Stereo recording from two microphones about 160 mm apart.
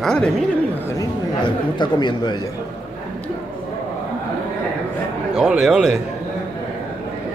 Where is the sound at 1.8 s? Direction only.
30° left (ahead or behind).